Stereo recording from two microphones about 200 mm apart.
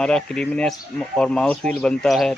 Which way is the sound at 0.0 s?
5° left (ahead or behind).